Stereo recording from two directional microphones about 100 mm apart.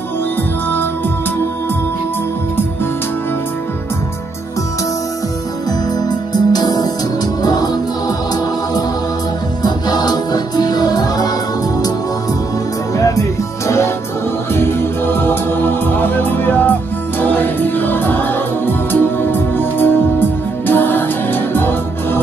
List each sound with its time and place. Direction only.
5.7 s music: 40° left (ahead or behind)
9.6 s music: 45° left (ahead or behind)
12.9 s music: 35° left (ahead or behind)